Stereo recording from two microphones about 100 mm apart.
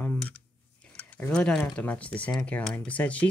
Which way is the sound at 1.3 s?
10° left (ahead or behind).